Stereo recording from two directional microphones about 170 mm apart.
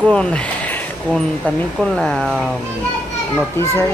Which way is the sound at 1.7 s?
5° left (ahead or behind).